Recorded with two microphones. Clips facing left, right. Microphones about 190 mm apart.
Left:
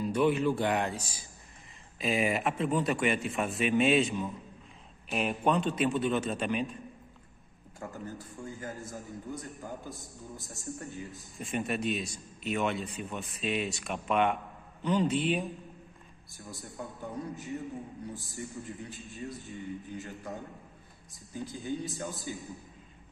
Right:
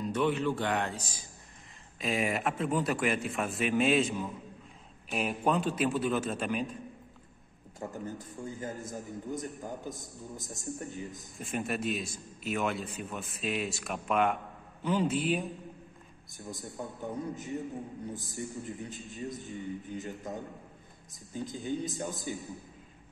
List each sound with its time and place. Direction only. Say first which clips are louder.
0.0 s speech: left 2 dB; 10° left (ahead or behind)
2.0 s a man's voice: left 2 dB; centre (ahead or behind)
7.8 s a man's voice: right 2 dB; 20° right (ahead or behind)
11.3 s a man's voice: left 1 dB; centre (ahead or behind)
16.3 s a man's voice: right 2 dB; 20° right (ahead or behind)
21.5 s a man's voice: right 1 dB; 20° right (ahead or behind)